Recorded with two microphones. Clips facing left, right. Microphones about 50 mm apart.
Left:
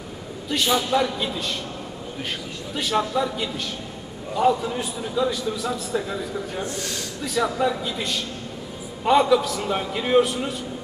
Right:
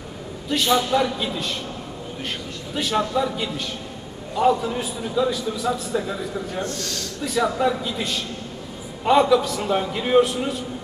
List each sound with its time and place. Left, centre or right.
0.5 s a man's voice: centre
2.7 s a man's voice: centre
6.6 s a man's voice: centre
7.2 s a man's voice: centre